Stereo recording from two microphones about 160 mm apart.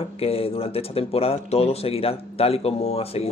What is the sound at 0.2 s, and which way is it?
Speech, 35° left (ahead or behind).